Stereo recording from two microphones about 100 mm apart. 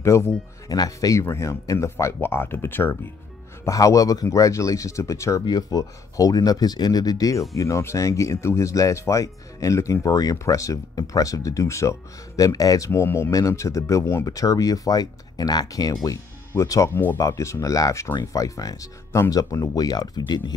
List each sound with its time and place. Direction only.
0.0 s speech: 30° left (ahead or behind)
3.6 s speech: 35° left (ahead or behind)
16.9 s speech: 20° left (ahead or behind)
17.2 s speech: 30° left (ahead or behind); by 20.5 s 45° left (ahead or behind)